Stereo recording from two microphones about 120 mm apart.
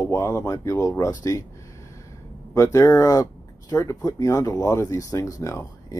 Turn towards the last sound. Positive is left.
turn(degrees=25)  # may be behind; listen again after turning